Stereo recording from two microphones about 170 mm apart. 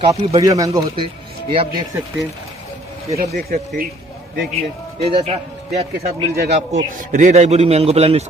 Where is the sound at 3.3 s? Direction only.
60° right (ahead or behind).